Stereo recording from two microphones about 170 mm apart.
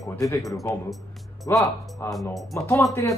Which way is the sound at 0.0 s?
20° left (ahead or behind).